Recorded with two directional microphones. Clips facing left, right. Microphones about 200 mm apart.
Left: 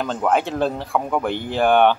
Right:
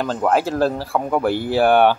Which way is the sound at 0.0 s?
Centre (ahead or behind).